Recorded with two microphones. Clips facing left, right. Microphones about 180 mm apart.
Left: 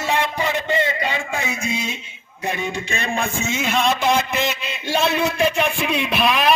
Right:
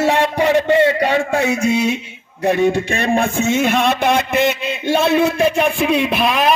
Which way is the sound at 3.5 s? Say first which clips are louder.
Right 4 dB; 60° right (ahead or behind).